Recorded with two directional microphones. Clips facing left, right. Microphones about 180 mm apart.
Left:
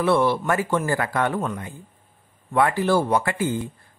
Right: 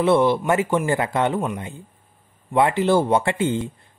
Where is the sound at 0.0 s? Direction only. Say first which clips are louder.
Right 3 dB; 20° right (ahead or behind).